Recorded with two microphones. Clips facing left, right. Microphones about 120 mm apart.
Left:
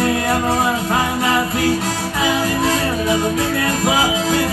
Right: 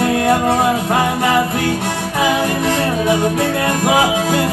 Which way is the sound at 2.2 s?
55° right (ahead or behind).